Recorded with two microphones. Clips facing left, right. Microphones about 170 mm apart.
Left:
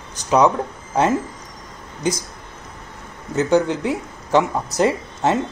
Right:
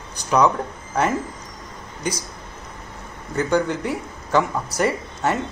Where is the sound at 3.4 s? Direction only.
20° left (ahead or behind).